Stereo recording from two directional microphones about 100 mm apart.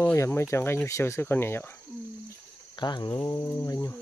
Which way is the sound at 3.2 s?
30° left (ahead or behind).